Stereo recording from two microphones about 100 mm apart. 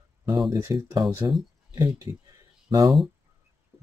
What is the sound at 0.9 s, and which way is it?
Speech, 45° right (ahead or behind).